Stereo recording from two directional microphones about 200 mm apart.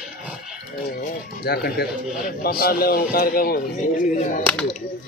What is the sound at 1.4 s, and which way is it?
Speech, 50° left (ahead or behind).